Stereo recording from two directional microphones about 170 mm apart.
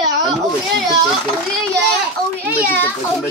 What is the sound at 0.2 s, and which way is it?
Children playing, centre (ahead or behind).